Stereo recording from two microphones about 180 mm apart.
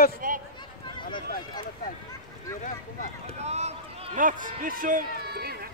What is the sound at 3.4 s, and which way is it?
A man's voice, 35° right (ahead or behind).